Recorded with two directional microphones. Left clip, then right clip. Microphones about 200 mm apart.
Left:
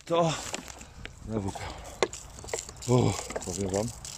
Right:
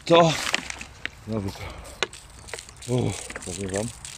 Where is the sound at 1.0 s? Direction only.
45° left (ahead or behind).